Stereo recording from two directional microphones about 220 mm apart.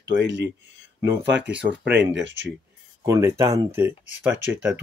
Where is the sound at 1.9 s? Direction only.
55° right (ahead or behind).